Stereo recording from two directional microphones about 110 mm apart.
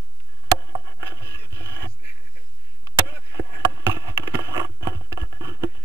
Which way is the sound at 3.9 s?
25° right (ahead or behind).